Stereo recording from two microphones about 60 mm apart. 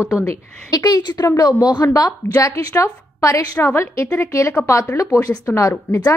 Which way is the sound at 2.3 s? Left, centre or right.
Left.